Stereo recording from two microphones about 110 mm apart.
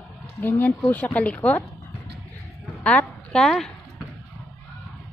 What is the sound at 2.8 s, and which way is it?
Speech, 5° left (ahead or behind).